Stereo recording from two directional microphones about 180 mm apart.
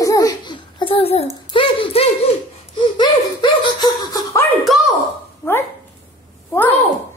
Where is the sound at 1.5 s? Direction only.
30° left (ahead or behind).